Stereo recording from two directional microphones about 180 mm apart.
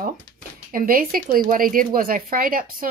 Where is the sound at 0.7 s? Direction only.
50° right (ahead or behind).